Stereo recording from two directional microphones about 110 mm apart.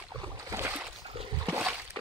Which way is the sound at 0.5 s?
20° right (ahead or behind).